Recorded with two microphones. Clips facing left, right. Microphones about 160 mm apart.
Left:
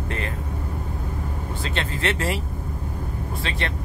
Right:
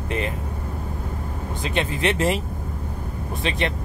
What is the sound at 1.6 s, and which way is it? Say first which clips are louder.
Speech: right 4 dB; 15° right (ahead or behind).